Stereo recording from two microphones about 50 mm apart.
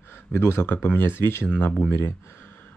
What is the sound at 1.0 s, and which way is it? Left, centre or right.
Speech, left.